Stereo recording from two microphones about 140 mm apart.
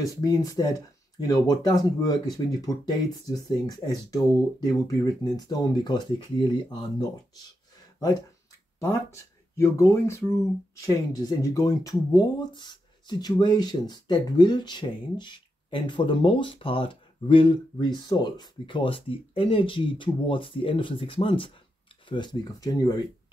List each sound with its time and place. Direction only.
0.0 s speech: 25° left (ahead or behind)
8.7 s speech: 20° left (ahead or behind)